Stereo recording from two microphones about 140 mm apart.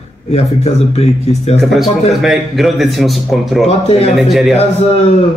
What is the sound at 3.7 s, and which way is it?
Speech, 45° left (ahead or behind).